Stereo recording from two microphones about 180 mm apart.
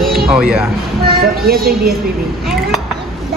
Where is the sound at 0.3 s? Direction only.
5° right (ahead or behind).